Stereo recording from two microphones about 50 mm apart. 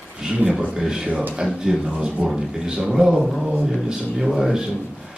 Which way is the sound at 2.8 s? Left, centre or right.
Centre.